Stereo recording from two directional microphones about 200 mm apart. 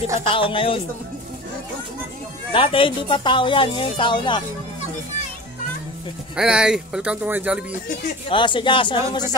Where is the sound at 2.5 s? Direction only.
25° left (ahead or behind).